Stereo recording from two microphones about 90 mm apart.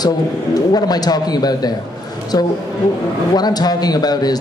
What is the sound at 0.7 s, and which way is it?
A man's voice, 45° left (ahead or behind).